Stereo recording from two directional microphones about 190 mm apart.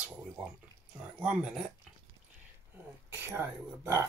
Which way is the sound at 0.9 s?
5° right (ahead or behind).